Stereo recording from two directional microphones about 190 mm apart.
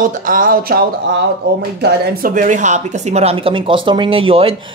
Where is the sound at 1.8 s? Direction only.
55° right (ahead or behind).